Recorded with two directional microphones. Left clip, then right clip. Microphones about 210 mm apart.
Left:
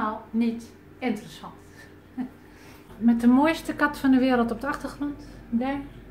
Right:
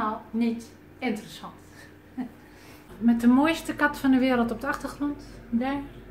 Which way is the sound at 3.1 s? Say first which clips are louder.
Left 1 dB; 10° left (ahead or behind).